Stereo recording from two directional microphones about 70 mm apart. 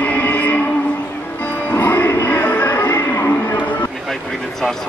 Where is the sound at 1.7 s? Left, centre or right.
Left.